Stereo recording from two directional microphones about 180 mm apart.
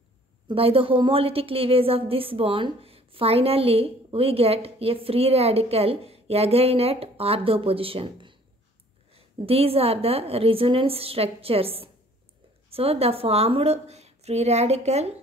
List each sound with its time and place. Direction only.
0.5 s a woman's voice: 30° right (ahead or behind)